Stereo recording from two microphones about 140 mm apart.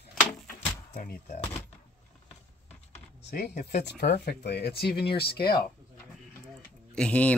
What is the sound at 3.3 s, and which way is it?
Speech, 90° left.